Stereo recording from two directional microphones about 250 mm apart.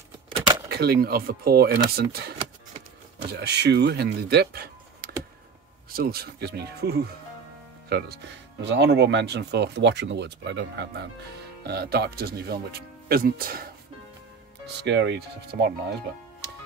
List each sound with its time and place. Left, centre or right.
0.7 s speech: right
3.3 s speech: right
14.8 s speech: right